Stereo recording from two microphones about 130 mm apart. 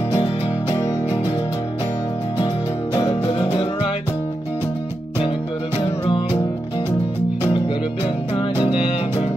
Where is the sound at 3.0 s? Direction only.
45° left (ahead or behind).